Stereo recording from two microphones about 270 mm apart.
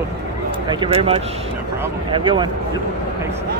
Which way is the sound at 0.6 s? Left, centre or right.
Centre.